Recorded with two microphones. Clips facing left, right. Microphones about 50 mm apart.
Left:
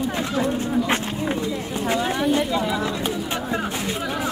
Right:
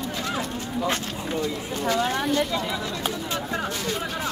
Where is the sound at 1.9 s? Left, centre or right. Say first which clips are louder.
Left 1 dB; centre.